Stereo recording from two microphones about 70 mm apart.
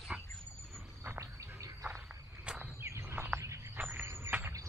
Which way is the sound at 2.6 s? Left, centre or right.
Right.